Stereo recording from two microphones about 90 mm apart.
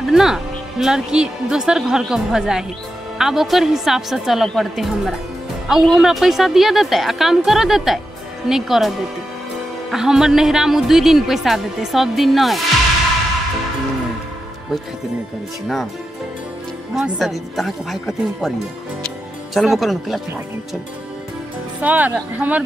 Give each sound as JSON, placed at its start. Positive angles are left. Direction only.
{"t": 0.0, "sound": "speech", "side_deg": -5}
{"t": 16.9, "sound": "speech", "side_deg": 0}
{"t": 19.5, "sound": "speech", "side_deg": 0}
{"t": 21.8, "sound": "speech", "side_deg": -20}